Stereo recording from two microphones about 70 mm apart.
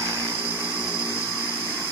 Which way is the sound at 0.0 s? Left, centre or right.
Right.